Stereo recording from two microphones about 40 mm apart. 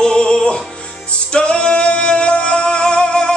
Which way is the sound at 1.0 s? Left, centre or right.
Left.